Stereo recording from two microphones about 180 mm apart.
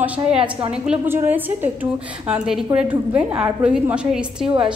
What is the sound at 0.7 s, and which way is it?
A woman's voice, 5° right (ahead or behind).